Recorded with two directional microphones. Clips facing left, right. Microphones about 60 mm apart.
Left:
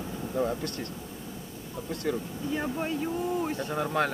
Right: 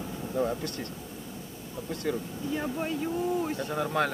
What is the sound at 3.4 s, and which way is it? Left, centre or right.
Speech, centre.